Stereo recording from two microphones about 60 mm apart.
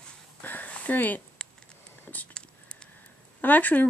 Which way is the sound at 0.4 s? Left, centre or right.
Left.